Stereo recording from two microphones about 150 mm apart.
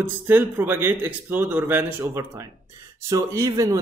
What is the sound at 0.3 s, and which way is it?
A man's voice, 15° right (ahead or behind).